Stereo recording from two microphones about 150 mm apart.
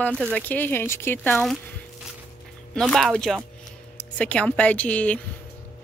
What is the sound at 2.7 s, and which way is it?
A woman's voice, centre (ahead or behind).